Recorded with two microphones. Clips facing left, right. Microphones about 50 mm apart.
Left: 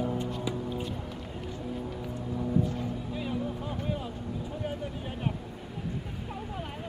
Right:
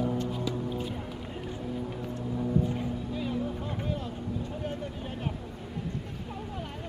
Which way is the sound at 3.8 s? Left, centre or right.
Centre.